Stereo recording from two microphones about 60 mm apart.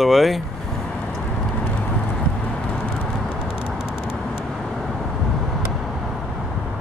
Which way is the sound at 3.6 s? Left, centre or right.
Centre.